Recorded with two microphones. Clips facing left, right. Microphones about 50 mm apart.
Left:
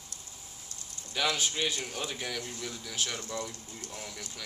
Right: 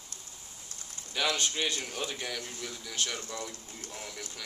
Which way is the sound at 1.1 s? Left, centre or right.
Centre.